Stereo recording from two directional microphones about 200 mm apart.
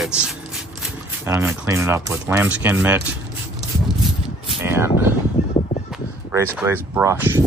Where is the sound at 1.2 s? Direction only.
10° right (ahead or behind).